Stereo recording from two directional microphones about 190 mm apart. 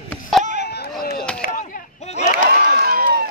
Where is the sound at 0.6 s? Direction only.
60° left (ahead or behind).